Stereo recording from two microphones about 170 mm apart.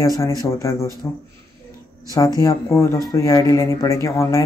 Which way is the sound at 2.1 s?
20° left (ahead or behind).